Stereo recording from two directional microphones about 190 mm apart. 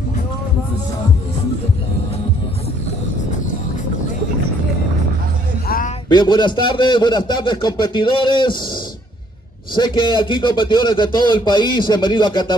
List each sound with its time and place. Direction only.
6.0 s speech: 25° left (ahead or behind)
9.8 s speech: 25° left (ahead or behind)